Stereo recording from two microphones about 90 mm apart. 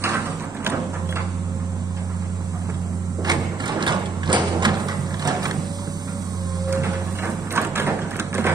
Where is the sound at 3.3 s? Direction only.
50° right (ahead or behind).